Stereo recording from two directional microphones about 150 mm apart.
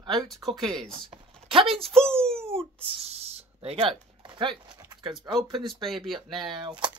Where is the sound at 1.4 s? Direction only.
40° right (ahead or behind).